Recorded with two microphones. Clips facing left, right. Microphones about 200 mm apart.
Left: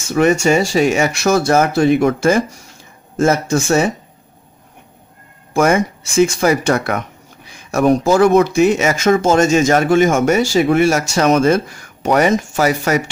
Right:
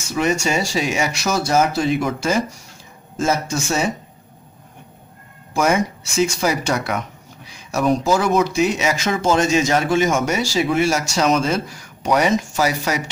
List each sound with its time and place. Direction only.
0.1 s speech: 55° left (ahead or behind)
5.5 s speech: 50° left (ahead or behind)